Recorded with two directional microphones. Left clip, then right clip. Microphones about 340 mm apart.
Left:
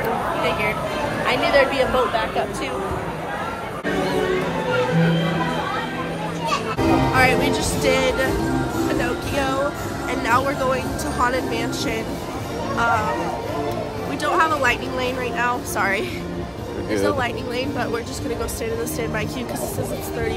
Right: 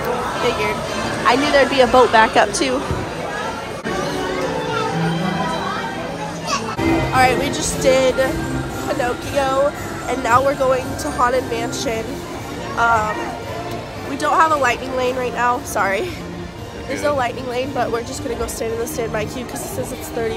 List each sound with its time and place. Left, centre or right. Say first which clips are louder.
1.2 s speech: right 3 dB; centre
7.2 s speech: right 4 dB; centre
14.2 s speech: right 4 dB; centre